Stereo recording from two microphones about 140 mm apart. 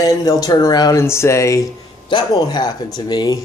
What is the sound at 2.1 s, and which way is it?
Speech, 30° left (ahead or behind).